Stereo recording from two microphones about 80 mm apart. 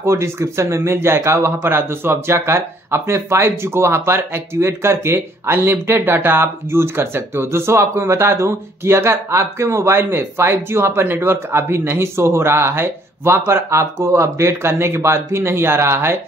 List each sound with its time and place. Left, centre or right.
0.0 s speech: right